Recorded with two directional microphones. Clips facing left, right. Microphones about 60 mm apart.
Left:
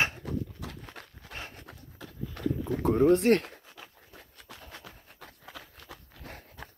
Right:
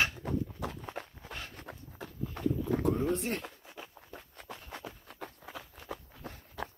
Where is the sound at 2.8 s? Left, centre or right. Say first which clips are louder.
Left 12 dB; left.